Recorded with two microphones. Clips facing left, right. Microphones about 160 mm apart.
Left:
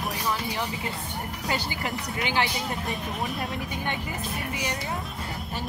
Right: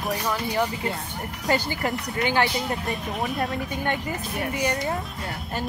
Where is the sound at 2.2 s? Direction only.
50° right (ahead or behind).